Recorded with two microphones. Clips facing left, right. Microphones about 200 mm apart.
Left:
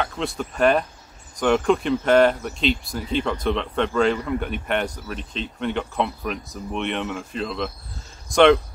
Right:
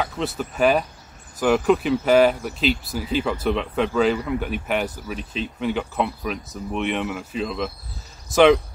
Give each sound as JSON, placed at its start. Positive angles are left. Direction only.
{"t": 0.0, "sound": "speech", "side_deg": -5}